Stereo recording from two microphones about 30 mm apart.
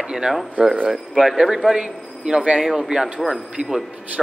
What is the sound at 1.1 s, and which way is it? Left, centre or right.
Speech, centre.